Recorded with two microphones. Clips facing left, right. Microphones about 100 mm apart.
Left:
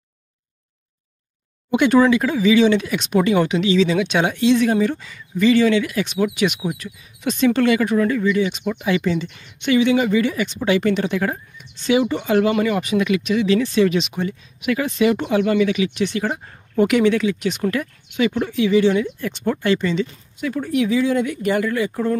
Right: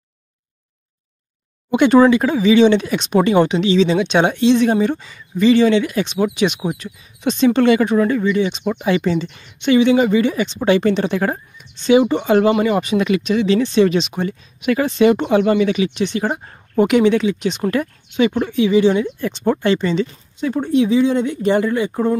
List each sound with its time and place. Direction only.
1.7 s speech: 30° right (ahead or behind)
6.6 s speech: 40° right (ahead or behind)
7.2 s speech: 25° right (ahead or behind)